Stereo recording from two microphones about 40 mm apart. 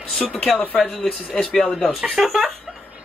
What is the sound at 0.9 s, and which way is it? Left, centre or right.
Speech, centre.